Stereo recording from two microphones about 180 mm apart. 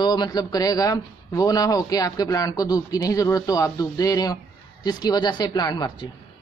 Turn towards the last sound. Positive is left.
turn(degrees=25)  # may be behind; listen again after turning